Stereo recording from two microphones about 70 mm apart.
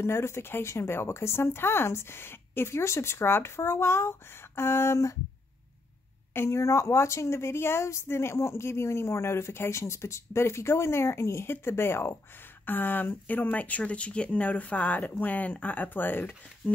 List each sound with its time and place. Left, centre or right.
0.0 s speech: left
6.3 s speech: left